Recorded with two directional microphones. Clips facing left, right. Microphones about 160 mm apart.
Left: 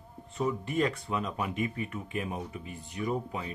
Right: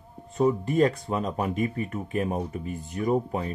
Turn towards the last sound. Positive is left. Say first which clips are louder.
# right 7 dB
turn(degrees=-45)  # may be behind; listen again after turning